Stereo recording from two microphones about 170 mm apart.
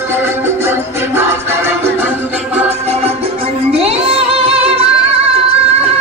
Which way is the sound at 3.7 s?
35° right (ahead or behind).